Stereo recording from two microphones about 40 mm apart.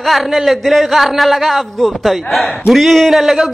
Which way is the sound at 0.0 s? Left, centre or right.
Centre.